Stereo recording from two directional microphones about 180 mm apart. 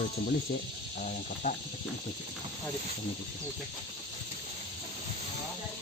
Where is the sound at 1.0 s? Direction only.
45° left (ahead or behind).